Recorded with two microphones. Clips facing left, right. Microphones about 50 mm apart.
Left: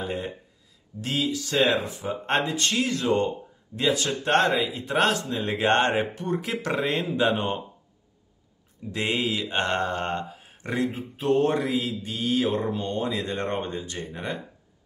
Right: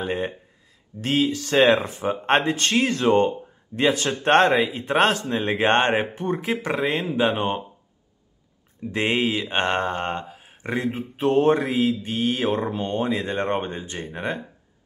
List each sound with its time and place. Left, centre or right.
1.0 s mantra: right; by 7.2 s centre
7.2 s speech: right
8.9 s mantra: right